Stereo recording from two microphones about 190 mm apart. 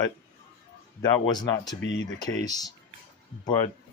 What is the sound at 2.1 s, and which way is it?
Speech, 20° left (ahead or behind).